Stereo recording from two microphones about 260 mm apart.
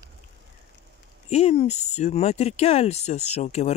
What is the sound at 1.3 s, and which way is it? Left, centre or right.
Speech, left.